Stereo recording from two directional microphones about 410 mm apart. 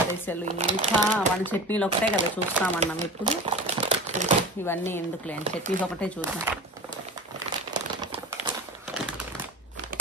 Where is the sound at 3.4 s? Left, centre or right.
Centre.